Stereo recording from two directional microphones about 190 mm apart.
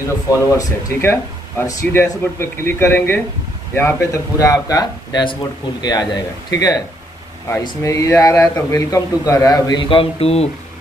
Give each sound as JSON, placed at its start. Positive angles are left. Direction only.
{"t": 0.3, "sound": "a man's voice", "side_deg": 15}